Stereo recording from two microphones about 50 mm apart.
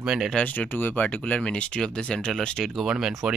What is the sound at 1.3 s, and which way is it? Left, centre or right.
Speech, centre.